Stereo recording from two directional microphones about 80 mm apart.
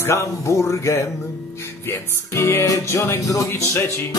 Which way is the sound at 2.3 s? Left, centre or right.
Left.